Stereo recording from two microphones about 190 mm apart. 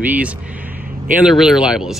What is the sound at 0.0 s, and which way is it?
Speech, 10° right (ahead or behind).